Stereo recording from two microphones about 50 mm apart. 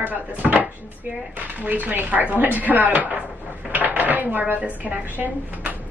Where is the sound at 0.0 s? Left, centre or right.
Right.